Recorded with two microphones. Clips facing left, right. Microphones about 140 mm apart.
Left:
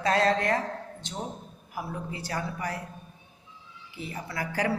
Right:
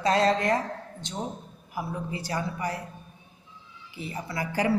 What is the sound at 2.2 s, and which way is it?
Speech, 25° right (ahead or behind).